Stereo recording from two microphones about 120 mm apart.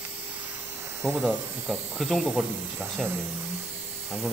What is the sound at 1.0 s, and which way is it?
Speech, 20° right (ahead or behind).